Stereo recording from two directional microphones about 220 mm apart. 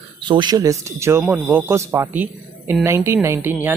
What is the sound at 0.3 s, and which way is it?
Speech, 20° right (ahead or behind).